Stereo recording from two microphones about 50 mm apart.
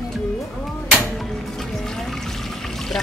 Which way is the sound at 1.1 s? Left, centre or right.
Centre.